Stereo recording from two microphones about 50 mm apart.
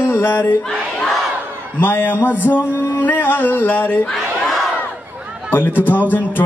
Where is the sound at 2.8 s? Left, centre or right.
Left.